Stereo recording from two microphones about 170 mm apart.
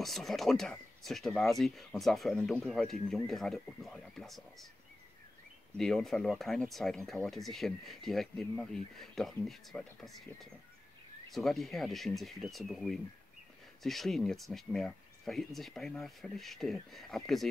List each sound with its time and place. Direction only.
0.0 s speech: centre (ahead or behind)
5.8 s speech: centre (ahead or behind)